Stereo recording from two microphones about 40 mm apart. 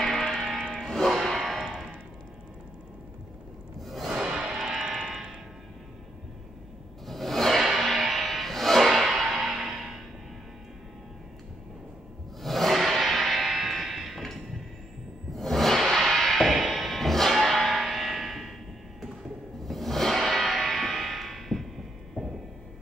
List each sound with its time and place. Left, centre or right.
0.0 s music: centre
1.2 s a sound: centre
1.6 s music: centre
3.8 s music: centre
4.1 s music: right
7.1 s a sound: centre
7.6 s music: centre
9.7 s music: centre
12.4 s a sound: centre
15.3 s a sound: centre
15.9 s music: centre
19.6 s music: centre